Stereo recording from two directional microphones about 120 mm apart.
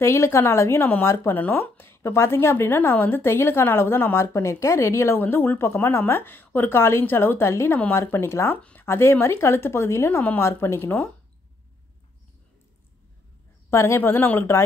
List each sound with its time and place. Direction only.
0.0 s speech: 20° left (ahead or behind)
13.7 s speech: 20° left (ahead or behind)